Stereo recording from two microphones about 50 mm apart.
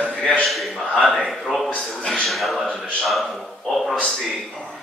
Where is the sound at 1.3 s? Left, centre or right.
Centre.